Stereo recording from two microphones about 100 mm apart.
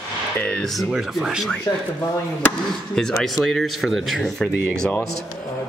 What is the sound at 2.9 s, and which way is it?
Speech, 5° left (ahead or behind).